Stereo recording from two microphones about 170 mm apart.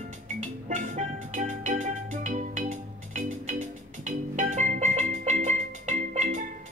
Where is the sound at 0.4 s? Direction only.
45° right (ahead or behind).